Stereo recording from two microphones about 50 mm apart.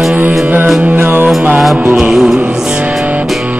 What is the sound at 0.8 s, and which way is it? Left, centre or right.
Music, right.